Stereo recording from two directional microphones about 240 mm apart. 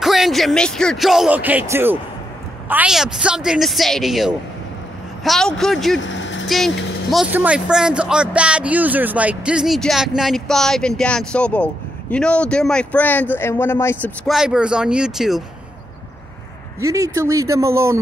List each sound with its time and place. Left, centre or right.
0.0 s speech: centre
5.9 s vehicle: left
6.4 s speech: centre
16.8 s speech: centre